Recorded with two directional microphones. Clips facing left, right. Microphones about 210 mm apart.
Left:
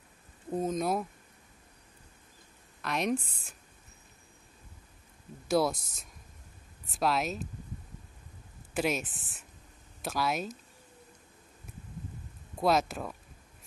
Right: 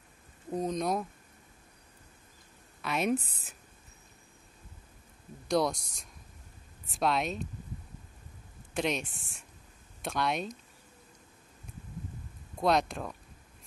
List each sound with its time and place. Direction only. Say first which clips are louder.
0.5 s speech: left 1 dB; 5° left (ahead or behind)
2.8 s a woman's voice: right 1 dB; centre (ahead or behind)
3.2 s speech: right 2 dB; 35° right (ahead or behind)
5.5 s speech: left 1 dB; 5° left (ahead or behind)
8.7 s speech: left 1 dB; 5° left (ahead or behind)
12.5 s speech: even; 5° left (ahead or behind)